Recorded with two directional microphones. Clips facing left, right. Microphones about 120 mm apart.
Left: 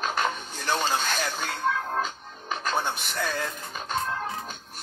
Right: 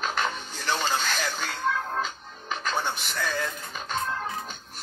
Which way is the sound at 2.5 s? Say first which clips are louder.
Left 1 dB; 45° left (ahead or behind).